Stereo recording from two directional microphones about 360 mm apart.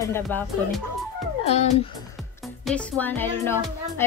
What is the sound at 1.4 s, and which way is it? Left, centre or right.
Speech, centre.